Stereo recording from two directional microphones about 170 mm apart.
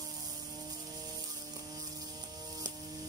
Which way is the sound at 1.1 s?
20° right (ahead or behind).